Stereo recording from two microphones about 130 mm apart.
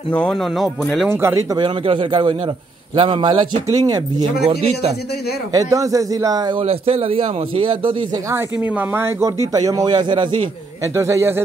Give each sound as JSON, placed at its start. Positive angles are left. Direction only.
{"t": 0.3, "sound": "speech", "side_deg": 0}
{"t": 1.1, "sound": "a man's voice", "side_deg": -20}
{"t": 1.6, "sound": "speech", "side_deg": -40}
{"t": 4.6, "sound": "a man's voice", "side_deg": -55}
{"t": 5.5, "sound": "a man's voice", "side_deg": -25}
{"t": 6.6, "sound": "speech", "side_deg": -50}
{"t": 8.3, "sound": "a man's voice", "side_deg": -20}
{"t": 9.5, "sound": "speech", "side_deg": -30}
{"t": 10.8, "sound": "a man's voice", "side_deg": -20}